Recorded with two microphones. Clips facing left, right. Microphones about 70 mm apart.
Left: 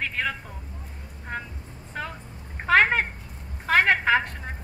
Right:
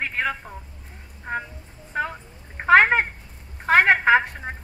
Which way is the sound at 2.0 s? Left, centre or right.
Right.